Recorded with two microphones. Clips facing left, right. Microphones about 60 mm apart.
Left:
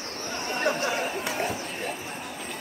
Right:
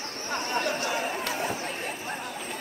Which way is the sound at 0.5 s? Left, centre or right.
Left.